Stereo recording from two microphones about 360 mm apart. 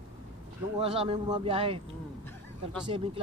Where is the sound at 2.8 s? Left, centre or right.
Centre.